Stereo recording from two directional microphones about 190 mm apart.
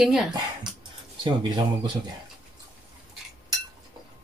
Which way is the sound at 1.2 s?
25° right (ahead or behind).